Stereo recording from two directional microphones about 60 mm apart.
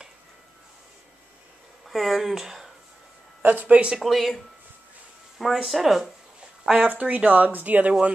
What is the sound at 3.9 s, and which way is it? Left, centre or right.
Speech, centre.